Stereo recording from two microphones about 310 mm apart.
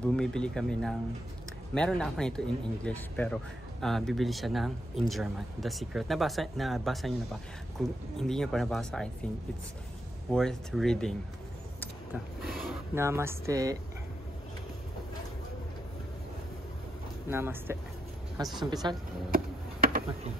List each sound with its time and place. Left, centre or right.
0.1 s speech: centre
10.3 s speech: centre
17.3 s speech: centre
19.3 s a sound: right